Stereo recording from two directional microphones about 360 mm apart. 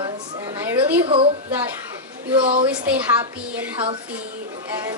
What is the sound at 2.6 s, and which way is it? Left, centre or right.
A woman's voice, centre.